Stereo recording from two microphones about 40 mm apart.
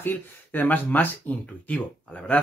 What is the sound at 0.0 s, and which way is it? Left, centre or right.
Speech, left.